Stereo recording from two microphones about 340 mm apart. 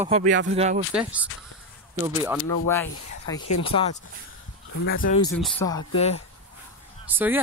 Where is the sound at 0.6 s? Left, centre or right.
Centre.